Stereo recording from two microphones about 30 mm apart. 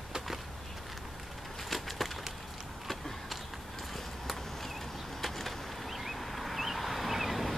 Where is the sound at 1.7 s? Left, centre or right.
Centre.